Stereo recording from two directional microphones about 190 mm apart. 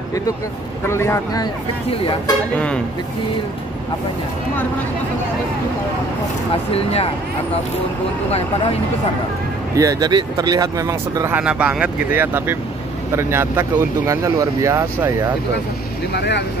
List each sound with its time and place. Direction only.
0.8 s a man's voice: 15° left (ahead or behind)
1.9 s speech: 25° left (ahead or behind)
2.5 s speech: 5° left (ahead or behind)
6.7 s speech: 30° left (ahead or behind)
9.8 s speech: 20° right (ahead or behind)
16.1 s speech: 60° left (ahead or behind)